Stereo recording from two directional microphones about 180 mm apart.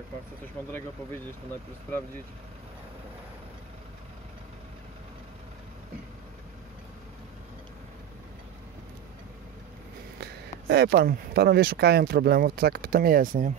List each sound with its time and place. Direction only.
0.7 s speech: 10° left (ahead or behind)
10.2 s speech: 65° right (ahead or behind)